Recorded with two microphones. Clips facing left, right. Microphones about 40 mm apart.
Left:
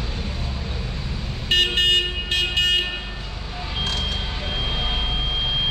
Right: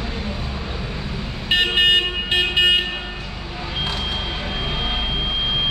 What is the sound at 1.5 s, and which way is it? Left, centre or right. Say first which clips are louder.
Vehicle: right 2 dB; centre.